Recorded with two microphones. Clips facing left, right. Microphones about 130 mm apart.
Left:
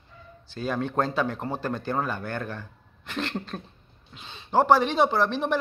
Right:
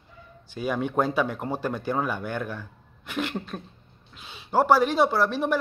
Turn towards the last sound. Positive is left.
turn(degrees=-5)  # may be behind; listen again after turning